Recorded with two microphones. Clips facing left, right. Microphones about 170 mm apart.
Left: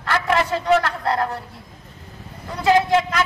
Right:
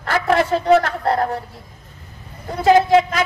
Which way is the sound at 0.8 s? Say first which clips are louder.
Right 3 dB; 50° right (ahead or behind).